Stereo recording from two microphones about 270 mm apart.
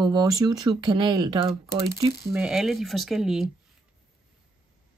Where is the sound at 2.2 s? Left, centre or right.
Centre.